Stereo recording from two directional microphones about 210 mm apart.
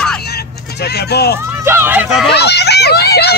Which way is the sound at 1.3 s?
10° right (ahead or behind).